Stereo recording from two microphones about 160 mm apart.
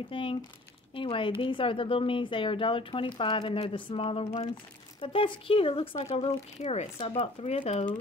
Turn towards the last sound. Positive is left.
turn(degrees=40)  # may be behind; listen again after turning